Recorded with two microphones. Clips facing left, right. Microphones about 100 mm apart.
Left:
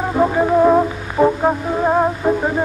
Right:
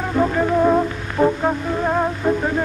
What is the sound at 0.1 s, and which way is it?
Music, 20° left (ahead or behind).